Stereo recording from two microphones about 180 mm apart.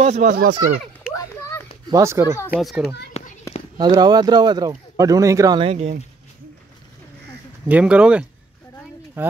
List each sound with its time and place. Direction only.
0.0 s speech: 40° right (ahead or behind)
1.1 s children playing: 15° left (ahead or behind)
1.9 s speech: 15° right (ahead or behind)
2.6 s a child's voice: centre (ahead or behind)
3.1 s a sound: 35° left (ahead or behind)
3.7 s speech: 25° right (ahead or behind)
5.6 s speech: 35° right (ahead or behind)
7.6 s speech: 5° right (ahead or behind)